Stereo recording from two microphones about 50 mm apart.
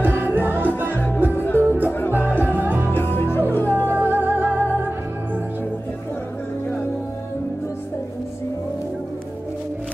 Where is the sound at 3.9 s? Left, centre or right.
Right.